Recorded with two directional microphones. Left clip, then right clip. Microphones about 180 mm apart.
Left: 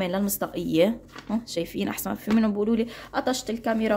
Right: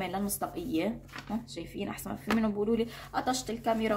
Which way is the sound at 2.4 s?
40° left (ahead or behind).